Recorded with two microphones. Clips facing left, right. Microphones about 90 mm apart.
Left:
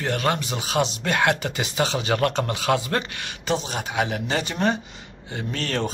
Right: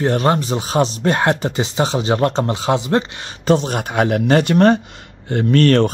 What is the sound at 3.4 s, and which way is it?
Speech, 45° right (ahead or behind).